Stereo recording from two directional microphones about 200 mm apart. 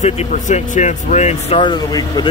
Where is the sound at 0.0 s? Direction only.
35° left (ahead or behind).